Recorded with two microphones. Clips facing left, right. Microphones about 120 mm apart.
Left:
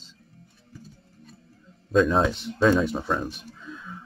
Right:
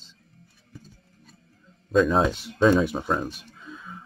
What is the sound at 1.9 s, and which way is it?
Speech, centre (ahead or behind).